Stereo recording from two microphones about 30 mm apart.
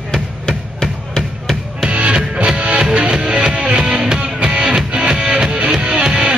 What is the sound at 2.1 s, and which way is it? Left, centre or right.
Music, right.